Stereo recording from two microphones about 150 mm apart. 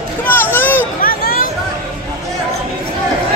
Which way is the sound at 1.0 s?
75° left (ahead or behind).